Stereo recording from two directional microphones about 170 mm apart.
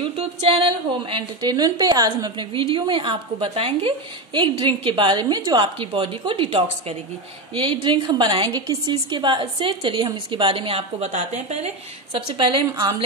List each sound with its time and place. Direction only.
0.0 s a woman's voice: 35° right (ahead or behind)
12.4 s a woman's voice: 30° right (ahead or behind)